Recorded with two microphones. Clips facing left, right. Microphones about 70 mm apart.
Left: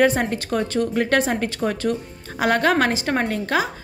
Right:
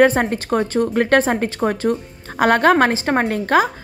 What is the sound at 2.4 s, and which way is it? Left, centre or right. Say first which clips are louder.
A woman's voice: right 5 dB; right.